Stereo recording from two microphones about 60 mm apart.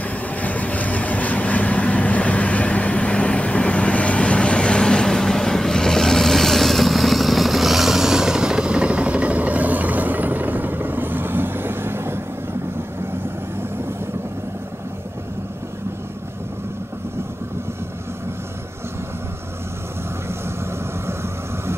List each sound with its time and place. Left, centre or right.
0.0 s vehicle: left; by 12.2 s right
21.1 s vehicle: right